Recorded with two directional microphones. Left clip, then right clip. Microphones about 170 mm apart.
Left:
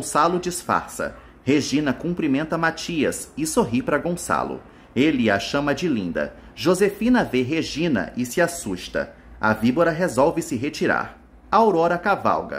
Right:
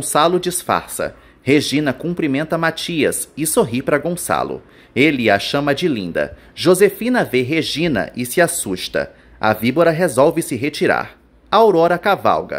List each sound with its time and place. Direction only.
0.1 s speech: 20° right (ahead or behind)